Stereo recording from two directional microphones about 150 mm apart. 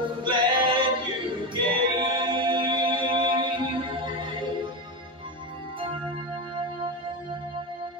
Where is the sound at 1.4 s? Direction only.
30° right (ahead or behind).